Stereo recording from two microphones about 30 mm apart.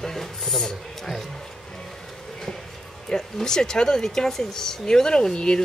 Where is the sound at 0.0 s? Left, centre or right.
Centre.